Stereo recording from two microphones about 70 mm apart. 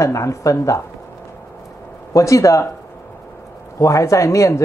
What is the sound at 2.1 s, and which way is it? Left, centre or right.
Speech, left.